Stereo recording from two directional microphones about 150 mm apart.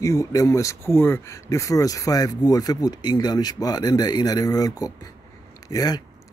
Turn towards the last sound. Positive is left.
turn(degrees=25)  # may be behind; listen again after turning